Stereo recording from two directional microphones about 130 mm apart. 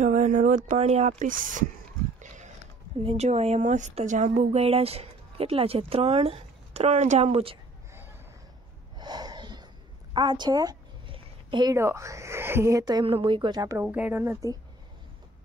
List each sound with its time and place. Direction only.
0.0 s speech: 70° right (ahead or behind)
1.2 s speech: 90° right
2.1 s pig: 70° right (ahead or behind)
3.0 s speech: 50° right (ahead or behind)
8.9 s a sound: 35° right (ahead or behind)
10.1 s speech: 35° right (ahead or behind)
11.1 s a sound: 35° right (ahead or behind)
11.7 s speech: 20° right (ahead or behind)
13.0 s speech: 45° right (ahead or behind)
13.8 s speech: 10° right (ahead or behind)